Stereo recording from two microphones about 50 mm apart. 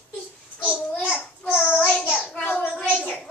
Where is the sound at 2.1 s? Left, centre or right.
Left.